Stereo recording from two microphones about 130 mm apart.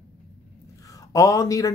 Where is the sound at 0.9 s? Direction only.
25° left (ahead or behind).